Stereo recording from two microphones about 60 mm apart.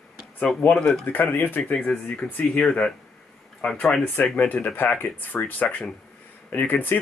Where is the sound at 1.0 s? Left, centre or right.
Left.